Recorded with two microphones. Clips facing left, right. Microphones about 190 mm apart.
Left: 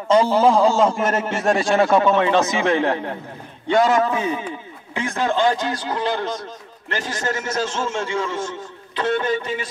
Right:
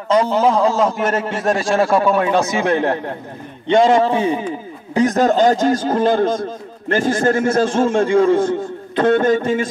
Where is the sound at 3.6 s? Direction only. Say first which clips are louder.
Right 4 dB; 25° right (ahead or behind).